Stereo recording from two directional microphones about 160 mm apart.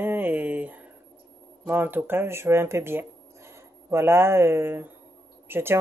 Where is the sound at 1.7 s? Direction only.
10° right (ahead or behind).